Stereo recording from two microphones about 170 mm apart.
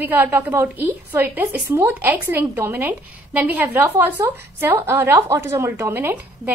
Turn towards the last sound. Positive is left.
turn(degrees=-15)  # may be behind; listen again after turning